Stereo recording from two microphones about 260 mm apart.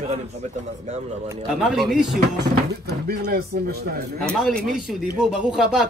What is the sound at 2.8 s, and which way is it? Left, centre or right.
Speech, right.